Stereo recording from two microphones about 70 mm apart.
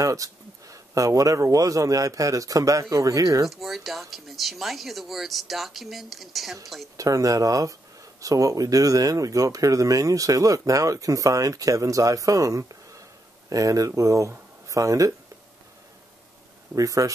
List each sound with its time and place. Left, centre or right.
0.0 s speech: right
3.4 s speech: centre
7.0 s speech: right
16.7 s speech: right